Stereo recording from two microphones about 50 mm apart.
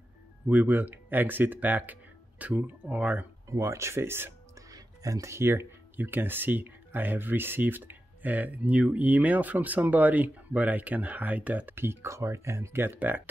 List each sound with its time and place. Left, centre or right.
0.5 s speech: right
3.4 s speech: right
11.7 s speech: right
12.8 s speech: right